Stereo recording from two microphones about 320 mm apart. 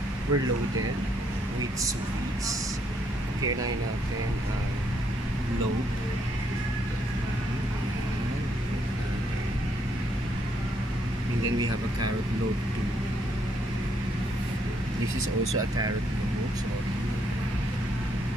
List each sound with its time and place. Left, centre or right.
0.3 s speech: right